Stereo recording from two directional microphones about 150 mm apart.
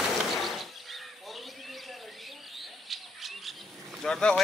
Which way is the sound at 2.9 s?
Centre (ahead or behind).